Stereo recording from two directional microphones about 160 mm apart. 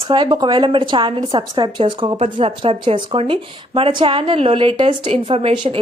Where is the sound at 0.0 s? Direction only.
30° right (ahead or behind).